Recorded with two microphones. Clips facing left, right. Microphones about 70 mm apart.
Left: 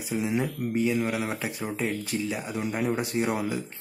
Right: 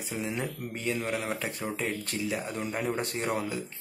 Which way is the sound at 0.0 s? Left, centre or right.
Centre.